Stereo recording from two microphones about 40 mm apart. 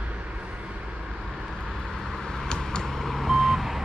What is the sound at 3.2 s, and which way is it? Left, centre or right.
Reversing beeps, centre.